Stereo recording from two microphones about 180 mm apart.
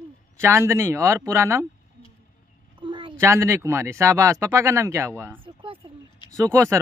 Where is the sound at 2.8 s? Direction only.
30° right (ahead or behind).